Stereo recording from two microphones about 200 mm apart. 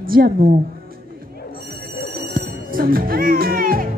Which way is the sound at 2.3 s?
45° right (ahead or behind).